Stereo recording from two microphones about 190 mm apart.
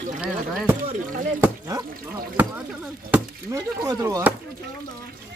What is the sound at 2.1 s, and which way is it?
Chop, 10° right (ahead or behind).